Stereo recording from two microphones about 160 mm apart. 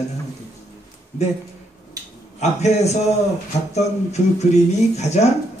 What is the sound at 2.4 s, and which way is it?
Speech, 45° left (ahead or behind).